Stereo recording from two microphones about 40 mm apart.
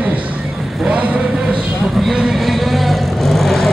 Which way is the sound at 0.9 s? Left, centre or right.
Right.